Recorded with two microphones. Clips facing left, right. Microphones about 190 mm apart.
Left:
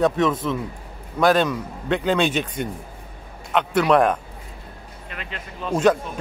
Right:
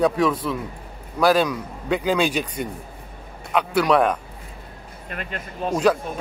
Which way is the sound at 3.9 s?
5° right (ahead or behind).